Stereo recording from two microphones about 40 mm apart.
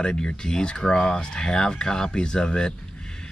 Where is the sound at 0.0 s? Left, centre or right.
Centre.